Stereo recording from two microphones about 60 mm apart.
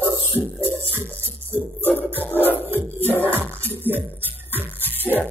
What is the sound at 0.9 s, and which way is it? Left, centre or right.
Music, right.